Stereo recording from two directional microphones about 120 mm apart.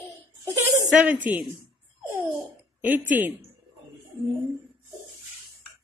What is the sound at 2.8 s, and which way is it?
Speech, 15° right (ahead or behind).